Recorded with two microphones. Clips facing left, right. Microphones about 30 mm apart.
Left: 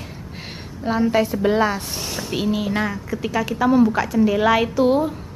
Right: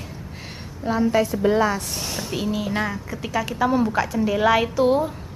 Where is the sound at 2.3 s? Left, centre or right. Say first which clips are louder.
Left 4 dB; centre.